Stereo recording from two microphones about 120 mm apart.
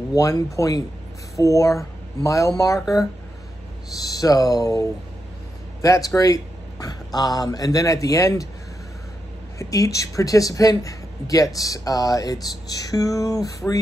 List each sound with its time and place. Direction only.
0.1 s speech: 30° left (ahead or behind)
4.0 s speech: 30° left (ahead or behind)
9.6 s speech: 30° left (ahead or behind)